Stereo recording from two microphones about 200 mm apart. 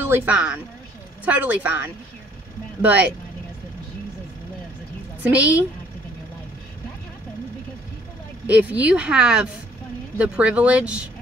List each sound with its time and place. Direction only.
0.0 s a woman's voice: 10° right (ahead or behind)
5.2 s a woman's voice: 5° right (ahead or behind)
8.5 s a woman's voice: 5° right (ahead or behind)